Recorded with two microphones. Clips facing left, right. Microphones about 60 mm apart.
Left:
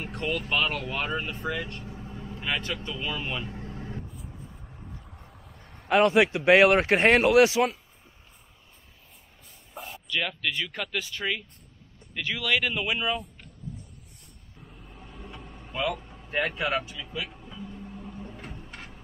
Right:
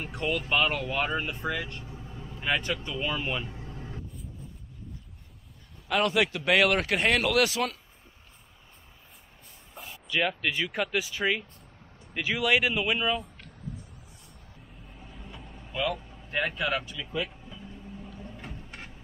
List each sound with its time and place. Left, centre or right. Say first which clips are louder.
0.1 s speech: right 1 dB; centre
1.4 s vehicle: even; centre
2.6 s speech: right 1 dB; centre
5.9 s speech: left 5 dB; left
10.0 s speech: right 2 dB; centre
12.7 s speech: right 1 dB; centre
15.0 s vehicle: left 2 dB; centre
16.1 s a sound: left 2 dB; centre
16.5 s speech: left 1 dB; left